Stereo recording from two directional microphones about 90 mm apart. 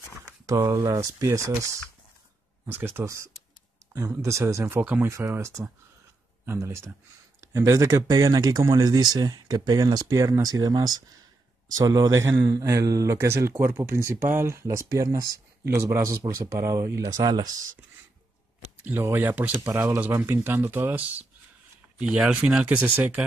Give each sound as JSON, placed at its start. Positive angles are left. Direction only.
{"t": 0.7, "sound": "a man's voice", "side_deg": -35}
{"t": 2.6, "sound": "a man's voice", "side_deg": -25}
{"t": 18.8, "sound": "speech", "side_deg": -20}